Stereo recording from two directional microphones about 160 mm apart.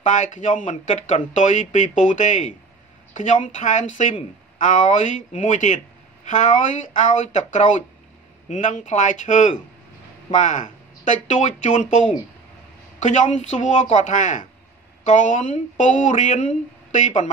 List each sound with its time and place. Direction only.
0.1 s speech: 50° left (ahead or behind)